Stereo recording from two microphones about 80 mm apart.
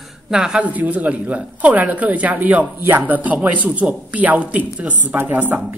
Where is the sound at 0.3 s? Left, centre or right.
Centre.